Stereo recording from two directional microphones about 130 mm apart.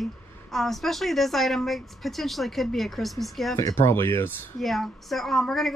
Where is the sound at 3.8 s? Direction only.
20° left (ahead or behind).